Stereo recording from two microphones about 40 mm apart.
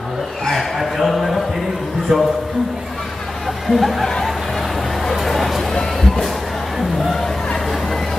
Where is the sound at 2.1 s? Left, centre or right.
Centre.